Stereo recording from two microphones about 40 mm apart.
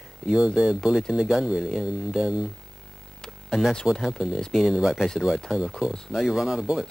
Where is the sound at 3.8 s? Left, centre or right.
Centre.